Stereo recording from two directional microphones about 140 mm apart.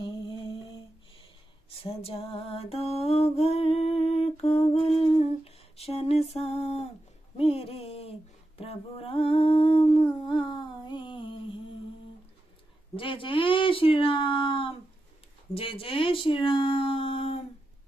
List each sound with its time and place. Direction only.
0.0 s a sound: 35° left (ahead or behind)
1.8 s mantra: 45° left (ahead or behind)
5.0 s humming: 45° left (ahead or behind)
7.3 s a sound: 45° left (ahead or behind)
8.5 s humming: 45° left (ahead or behind)
12.9 s speech: 40° left (ahead or behind)